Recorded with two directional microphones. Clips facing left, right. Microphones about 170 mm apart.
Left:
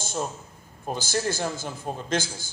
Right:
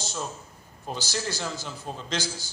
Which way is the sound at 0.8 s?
50° left (ahead or behind).